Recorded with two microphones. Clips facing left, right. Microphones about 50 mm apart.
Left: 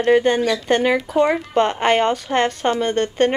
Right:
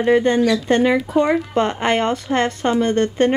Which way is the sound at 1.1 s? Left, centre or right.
Centre.